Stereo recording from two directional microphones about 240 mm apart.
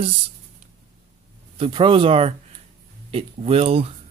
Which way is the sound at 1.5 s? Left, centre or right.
Right.